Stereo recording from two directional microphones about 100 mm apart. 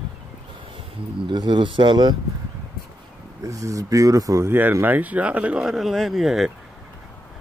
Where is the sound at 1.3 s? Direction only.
50° right (ahead or behind).